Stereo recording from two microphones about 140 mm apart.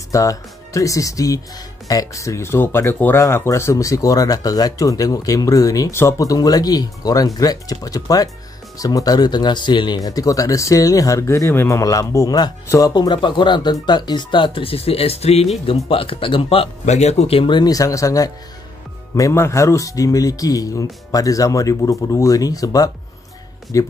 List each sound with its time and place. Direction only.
0.1 s speech: 25° left (ahead or behind); by 16.6 s 40° left (ahead or behind)
16.8 s speech: 50° left (ahead or behind); by 23.9 s 25° left (ahead or behind)